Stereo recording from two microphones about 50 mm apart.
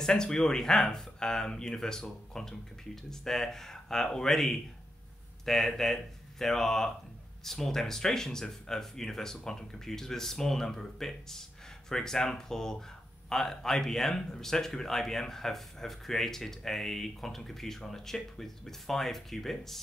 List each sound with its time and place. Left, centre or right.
0.0 s speech: centre